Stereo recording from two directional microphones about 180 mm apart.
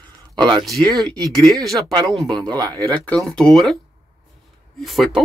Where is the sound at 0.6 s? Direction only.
Centre (ahead or behind).